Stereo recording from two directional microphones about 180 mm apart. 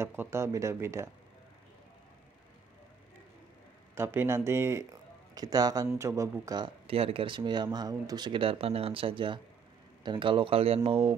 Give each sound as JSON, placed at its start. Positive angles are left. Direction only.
{"t": 0.0, "sound": "speech", "side_deg": -15}
{"t": 3.9, "sound": "speech", "side_deg": -15}